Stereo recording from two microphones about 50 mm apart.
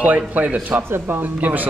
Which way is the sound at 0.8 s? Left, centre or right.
Right.